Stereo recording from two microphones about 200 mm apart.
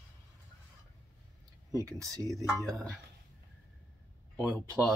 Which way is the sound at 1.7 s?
15° right (ahead or behind).